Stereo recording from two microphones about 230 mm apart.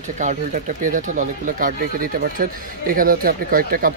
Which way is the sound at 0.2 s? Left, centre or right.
Right.